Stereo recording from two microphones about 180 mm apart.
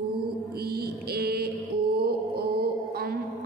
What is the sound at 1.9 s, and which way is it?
Music, 60° right (ahead or behind).